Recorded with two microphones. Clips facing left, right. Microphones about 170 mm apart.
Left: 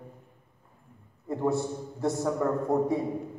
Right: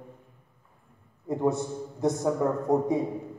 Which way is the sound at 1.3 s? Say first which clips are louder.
Right 1 dB; 20° right (ahead or behind).